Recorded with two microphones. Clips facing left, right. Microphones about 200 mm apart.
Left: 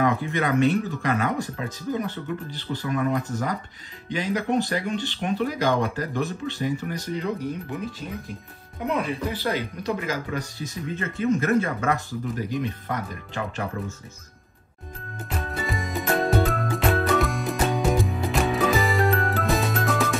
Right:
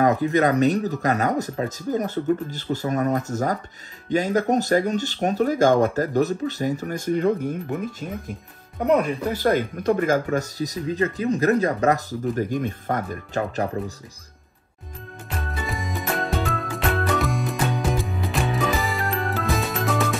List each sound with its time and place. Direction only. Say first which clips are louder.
0.0 s speech: right 5 dB; 40° right (ahead or behind)
15.2 s music: left 1 dB; centre (ahead or behind)